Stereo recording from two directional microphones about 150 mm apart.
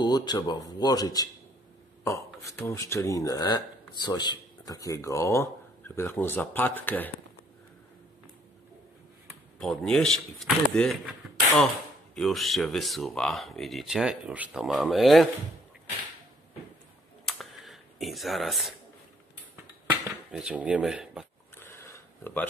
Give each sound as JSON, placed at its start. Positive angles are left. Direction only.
{"t": 0.0, "sound": "speech", "side_deg": 30}
{"t": 9.6, "sound": "speech", "side_deg": 5}
{"t": 12.2, "sound": "speech", "side_deg": 0}
{"t": 17.3, "sound": "camera", "side_deg": 0}
{"t": 19.9, "sound": "speech", "side_deg": -10}
{"t": 21.5, "sound": "a sound", "side_deg": 20}